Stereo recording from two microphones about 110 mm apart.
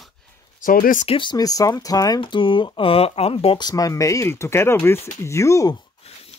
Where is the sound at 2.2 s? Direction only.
50° left (ahead or behind).